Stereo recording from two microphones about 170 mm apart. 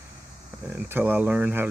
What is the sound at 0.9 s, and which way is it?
Speech, 10° right (ahead or behind).